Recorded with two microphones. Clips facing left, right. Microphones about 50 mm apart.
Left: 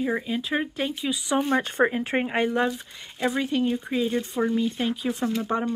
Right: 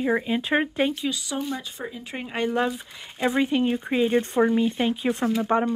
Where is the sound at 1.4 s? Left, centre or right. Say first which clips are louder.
Left 9 dB; left.